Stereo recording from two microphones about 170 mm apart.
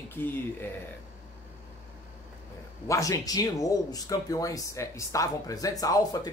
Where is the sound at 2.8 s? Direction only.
20° left (ahead or behind).